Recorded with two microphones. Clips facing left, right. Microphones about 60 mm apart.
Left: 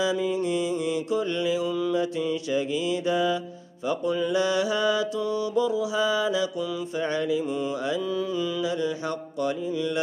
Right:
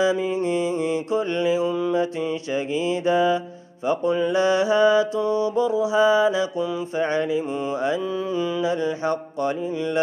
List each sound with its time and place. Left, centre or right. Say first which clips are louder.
0.0 s mantra: right 4 dB; right